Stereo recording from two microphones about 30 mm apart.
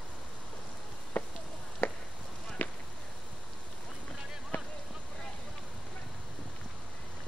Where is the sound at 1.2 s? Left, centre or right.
Left.